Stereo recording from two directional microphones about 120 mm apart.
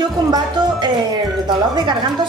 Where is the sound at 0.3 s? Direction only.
35° right (ahead or behind).